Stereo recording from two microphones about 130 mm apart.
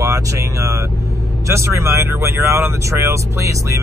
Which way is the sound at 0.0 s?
25° right (ahead or behind).